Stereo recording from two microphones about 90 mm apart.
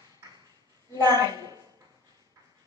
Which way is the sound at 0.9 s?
45° right (ahead or behind).